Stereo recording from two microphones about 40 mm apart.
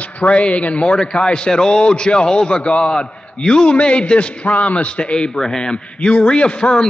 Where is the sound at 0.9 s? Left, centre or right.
Left.